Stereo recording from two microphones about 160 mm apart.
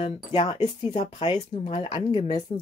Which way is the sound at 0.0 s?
35° left (ahead or behind).